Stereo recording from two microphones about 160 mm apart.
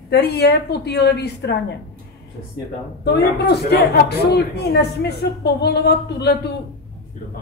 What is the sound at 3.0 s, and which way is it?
Speech, 90° left.